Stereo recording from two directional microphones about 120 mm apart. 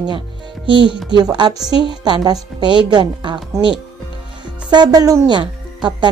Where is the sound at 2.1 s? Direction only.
40° right (ahead or behind).